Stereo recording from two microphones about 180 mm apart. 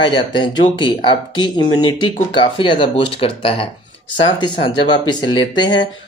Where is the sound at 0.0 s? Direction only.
25° left (ahead or behind).